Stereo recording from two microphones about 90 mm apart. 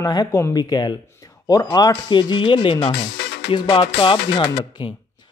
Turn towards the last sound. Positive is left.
turn(degrees=75)  # may be behind; listen again after turning